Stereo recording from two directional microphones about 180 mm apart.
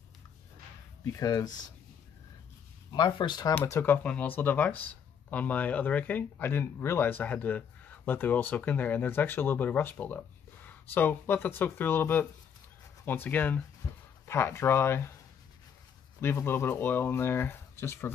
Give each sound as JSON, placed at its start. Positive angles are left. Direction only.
{"t": 1.1, "sound": "speech", "side_deg": 20}
{"t": 2.9, "sound": "speech", "side_deg": 25}
{"t": 16.2, "sound": "speech", "side_deg": 10}